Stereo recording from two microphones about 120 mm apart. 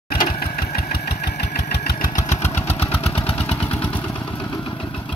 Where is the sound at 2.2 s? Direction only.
65° left (ahead or behind).